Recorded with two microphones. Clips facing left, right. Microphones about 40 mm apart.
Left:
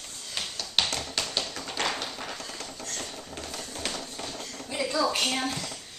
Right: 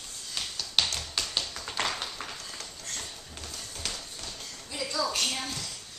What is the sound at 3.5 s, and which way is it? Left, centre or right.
Music, left.